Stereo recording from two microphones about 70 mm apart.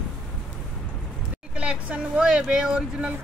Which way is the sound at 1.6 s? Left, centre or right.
Centre.